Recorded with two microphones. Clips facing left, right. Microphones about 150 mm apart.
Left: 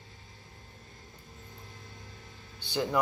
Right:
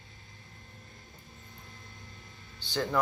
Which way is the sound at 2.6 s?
15° left (ahead or behind).